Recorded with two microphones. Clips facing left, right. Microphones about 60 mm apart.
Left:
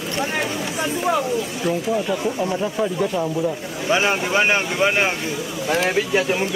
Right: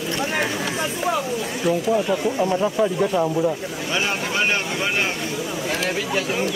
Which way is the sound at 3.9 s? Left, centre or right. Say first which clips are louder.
Left 6 dB; centre.